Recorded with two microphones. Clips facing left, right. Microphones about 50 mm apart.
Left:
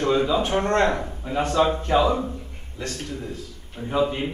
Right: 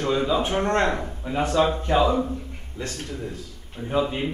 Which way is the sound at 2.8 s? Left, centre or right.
Right.